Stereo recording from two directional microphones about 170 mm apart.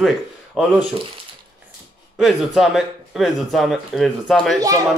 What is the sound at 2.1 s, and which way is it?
Speech, centre (ahead or behind).